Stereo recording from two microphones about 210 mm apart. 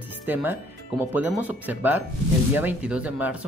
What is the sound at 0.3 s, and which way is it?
Speech, 10° right (ahead or behind).